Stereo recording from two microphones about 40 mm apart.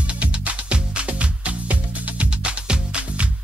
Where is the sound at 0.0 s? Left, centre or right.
Right.